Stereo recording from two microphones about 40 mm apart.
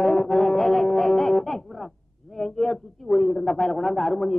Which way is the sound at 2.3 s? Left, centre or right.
Centre.